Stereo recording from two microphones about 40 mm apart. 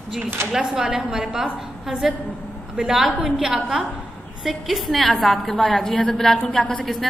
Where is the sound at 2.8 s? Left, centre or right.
Centre.